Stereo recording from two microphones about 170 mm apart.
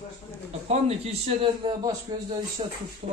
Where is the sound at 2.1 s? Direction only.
25° right (ahead or behind).